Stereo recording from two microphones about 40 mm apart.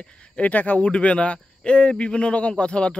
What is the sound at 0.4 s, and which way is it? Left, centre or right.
Speech, left.